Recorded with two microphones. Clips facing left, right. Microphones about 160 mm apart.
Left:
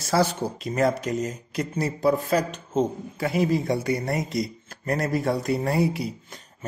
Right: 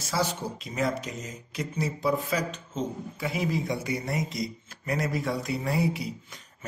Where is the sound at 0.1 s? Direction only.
55° left (ahead or behind).